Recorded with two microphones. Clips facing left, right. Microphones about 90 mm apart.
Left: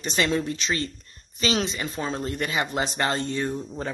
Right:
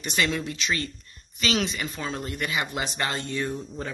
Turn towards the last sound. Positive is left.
turn(degrees=30)  # may be behind; listen again after turning